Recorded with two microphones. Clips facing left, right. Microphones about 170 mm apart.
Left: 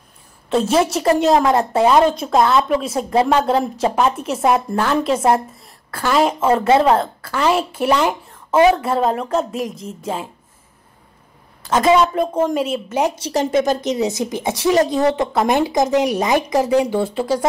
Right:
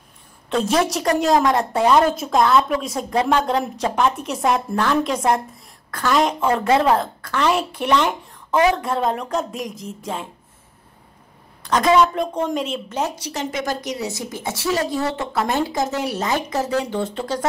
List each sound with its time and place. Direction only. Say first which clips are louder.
0.5 s a woman's voice: left 3 dB; centre (ahead or behind)
11.6 s a woman's voice: left 2 dB; 5° left (ahead or behind)
13.0 s a woman's voice: left 5 dB; 20° left (ahead or behind)
13.3 s a woman's voice: left 8 dB; 35° left (ahead or behind); by 17.5 s 10° left (ahead or behind)